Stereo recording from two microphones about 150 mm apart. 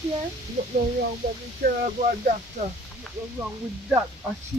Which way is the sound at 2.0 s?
55° right (ahead or behind).